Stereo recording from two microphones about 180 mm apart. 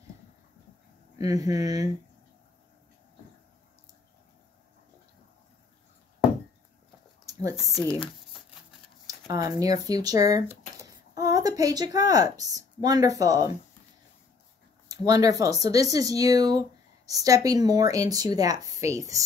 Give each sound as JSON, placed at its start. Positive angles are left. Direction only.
{"t": 1.1, "sound": "speech", "side_deg": -20}
{"t": 7.3, "sound": "a sound", "side_deg": -20}
{"t": 9.0, "sound": "speech", "side_deg": -20}
{"t": 14.9, "sound": "speech", "side_deg": -20}